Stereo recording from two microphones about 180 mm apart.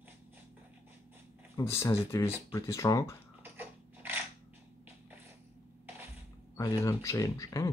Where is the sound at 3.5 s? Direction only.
10° right (ahead or behind).